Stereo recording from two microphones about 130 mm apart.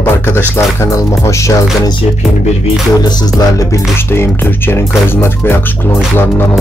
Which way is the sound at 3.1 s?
30° left (ahead or behind).